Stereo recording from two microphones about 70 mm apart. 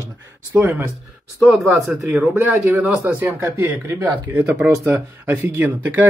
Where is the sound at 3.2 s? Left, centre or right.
Right.